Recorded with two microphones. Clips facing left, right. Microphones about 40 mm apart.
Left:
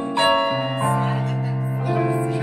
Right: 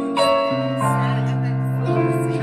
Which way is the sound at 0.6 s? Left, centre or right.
Left.